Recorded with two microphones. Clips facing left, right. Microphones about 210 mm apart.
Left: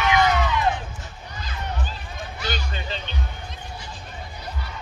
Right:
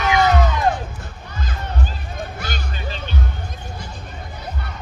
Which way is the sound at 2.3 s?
50° right (ahead or behind).